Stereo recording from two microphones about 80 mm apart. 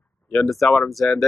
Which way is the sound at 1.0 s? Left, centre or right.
Centre.